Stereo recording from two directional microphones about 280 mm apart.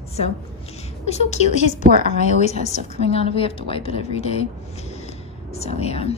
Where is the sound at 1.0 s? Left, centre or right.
Left.